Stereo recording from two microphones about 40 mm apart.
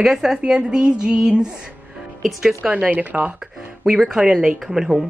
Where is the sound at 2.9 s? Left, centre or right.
Right.